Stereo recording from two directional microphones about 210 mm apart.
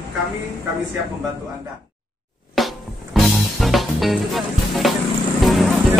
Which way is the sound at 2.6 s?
Centre (ahead or behind).